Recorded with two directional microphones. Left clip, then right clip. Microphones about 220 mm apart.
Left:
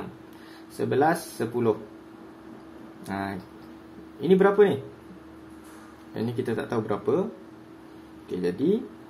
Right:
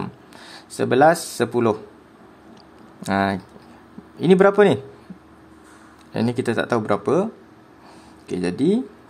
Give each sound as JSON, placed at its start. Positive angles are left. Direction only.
{"t": 0.7, "sound": "speech", "side_deg": -40}
{"t": 3.0, "sound": "speech", "side_deg": -40}
{"t": 6.1, "sound": "speech", "side_deg": -40}
{"t": 8.3, "sound": "speech", "side_deg": -40}